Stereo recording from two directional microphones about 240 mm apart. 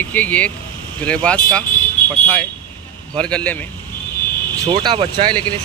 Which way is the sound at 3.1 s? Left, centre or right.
Centre.